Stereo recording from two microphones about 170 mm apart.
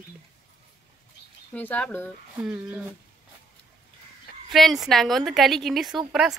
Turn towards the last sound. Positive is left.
turn(degrees=0)  # may be behind; listen again after turning